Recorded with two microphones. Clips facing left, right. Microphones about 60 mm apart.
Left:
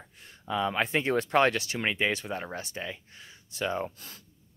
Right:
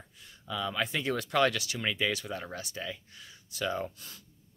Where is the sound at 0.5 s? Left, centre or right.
Left.